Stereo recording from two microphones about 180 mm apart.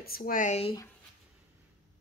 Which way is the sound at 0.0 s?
55° left (ahead or behind).